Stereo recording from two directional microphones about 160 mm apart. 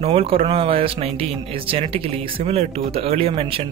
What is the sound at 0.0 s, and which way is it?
Speech, 35° right (ahead or behind).